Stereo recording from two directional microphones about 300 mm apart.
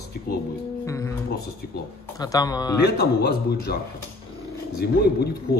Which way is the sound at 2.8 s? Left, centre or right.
Left.